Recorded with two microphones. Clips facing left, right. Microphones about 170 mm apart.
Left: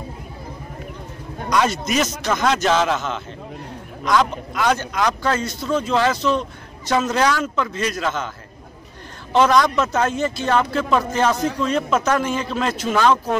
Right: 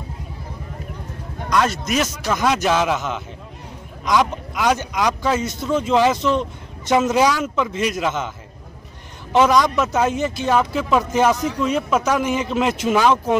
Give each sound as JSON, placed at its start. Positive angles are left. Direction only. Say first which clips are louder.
{"t": 1.5, "sound": "speech", "louder": "even", "side_deg": 0}
{"t": 9.3, "sound": "speech", "louder": "even", "side_deg": -15}